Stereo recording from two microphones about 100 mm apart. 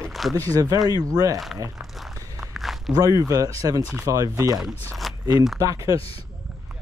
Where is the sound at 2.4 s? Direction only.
Centre (ahead or behind).